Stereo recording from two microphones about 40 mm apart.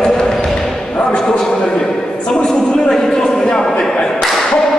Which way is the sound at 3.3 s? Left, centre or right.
Left.